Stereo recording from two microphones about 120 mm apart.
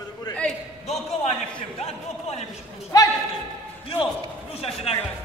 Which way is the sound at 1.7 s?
60° left (ahead or behind).